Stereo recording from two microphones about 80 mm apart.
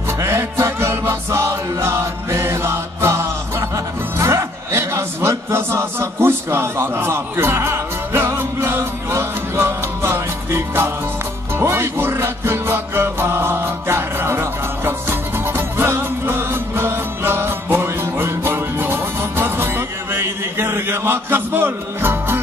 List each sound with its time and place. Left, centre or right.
0.2 s music: right